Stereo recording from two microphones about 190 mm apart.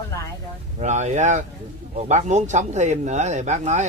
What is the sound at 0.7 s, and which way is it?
Speech, 35° right (ahead or behind).